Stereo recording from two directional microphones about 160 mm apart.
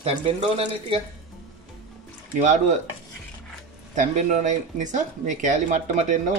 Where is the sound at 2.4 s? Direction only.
45° right (ahead or behind).